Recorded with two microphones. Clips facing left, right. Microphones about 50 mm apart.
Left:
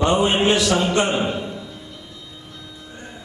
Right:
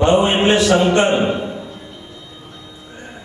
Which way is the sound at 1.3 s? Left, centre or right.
Right.